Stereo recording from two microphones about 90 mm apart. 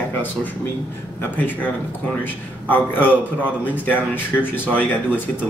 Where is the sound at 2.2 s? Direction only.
20° left (ahead or behind).